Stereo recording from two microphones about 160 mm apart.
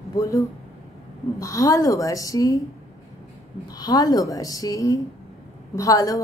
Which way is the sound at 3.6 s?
25° left (ahead or behind).